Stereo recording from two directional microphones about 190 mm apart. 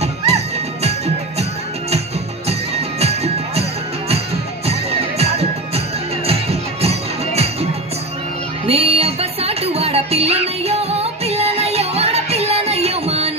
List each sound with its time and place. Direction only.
2.4 s music: 35° right (ahead or behind)
4.6 s music: 35° right (ahead or behind)
8.6 s music: 30° right (ahead or behind)